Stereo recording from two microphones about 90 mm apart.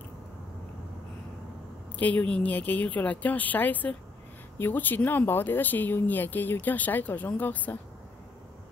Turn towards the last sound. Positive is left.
turn(degrees=20)  # may be behind; listen again after turning